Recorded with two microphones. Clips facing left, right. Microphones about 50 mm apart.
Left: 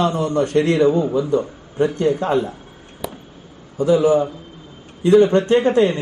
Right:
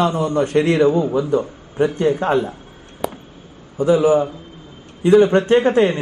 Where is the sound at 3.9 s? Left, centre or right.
Centre.